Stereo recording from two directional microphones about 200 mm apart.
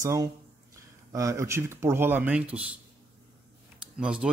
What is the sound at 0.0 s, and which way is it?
Speech, 15° right (ahead or behind).